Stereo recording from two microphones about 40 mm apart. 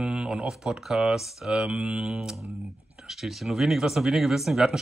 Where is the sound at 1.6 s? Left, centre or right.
Right.